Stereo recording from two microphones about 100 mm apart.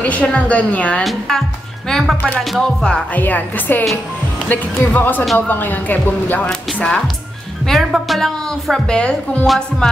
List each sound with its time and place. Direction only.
0.0 s speech: 15° left (ahead or behind)
1.0 s a woman's voice: centre (ahead or behind)
2.6 s speech: 5° left (ahead or behind)
3.2 s a woman's voice: 15° left (ahead or behind)